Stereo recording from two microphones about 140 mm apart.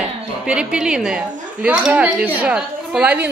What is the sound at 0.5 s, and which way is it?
A woman's voice, 5° right (ahead or behind).